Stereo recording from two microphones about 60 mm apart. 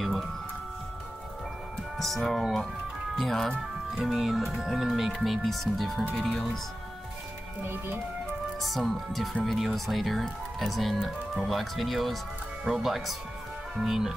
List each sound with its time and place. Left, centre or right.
2.0 s music: centre
3.2 s speech: centre
7.6 s speech: right
8.5 s speech: centre